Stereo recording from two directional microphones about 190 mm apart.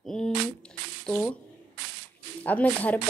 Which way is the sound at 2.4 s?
10° left (ahead or behind).